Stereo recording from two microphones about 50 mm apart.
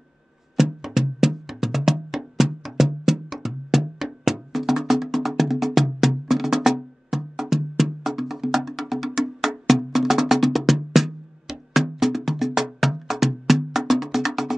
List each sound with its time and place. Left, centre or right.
0.8 s music: centre